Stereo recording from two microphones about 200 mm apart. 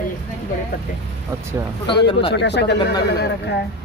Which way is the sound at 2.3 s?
60° left (ahead or behind).